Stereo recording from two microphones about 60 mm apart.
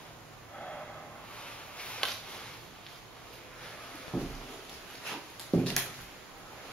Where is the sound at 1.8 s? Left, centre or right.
Centre.